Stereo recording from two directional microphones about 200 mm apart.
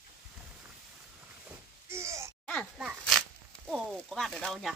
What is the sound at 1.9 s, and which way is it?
Groan, 15° right (ahead or behind).